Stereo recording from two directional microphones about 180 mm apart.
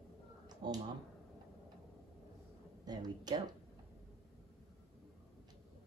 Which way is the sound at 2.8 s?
20° right (ahead or behind).